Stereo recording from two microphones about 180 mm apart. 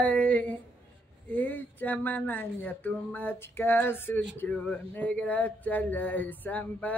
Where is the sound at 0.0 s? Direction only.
5° left (ahead or behind).